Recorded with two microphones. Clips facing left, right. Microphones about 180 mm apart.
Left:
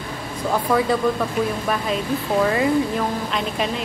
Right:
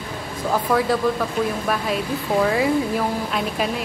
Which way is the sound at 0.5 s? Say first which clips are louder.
Even; centre (ahead or behind).